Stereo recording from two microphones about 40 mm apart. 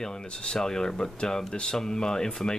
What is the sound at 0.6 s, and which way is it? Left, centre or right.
Speech, centre.